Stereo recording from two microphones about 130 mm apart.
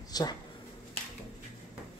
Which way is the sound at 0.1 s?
30° left (ahead or behind).